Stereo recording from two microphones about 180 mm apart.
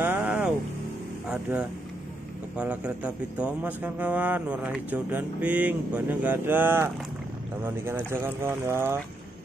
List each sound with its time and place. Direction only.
0.0 s music: 5° right (ahead or behind)
1.3 s speech: 5° right (ahead or behind)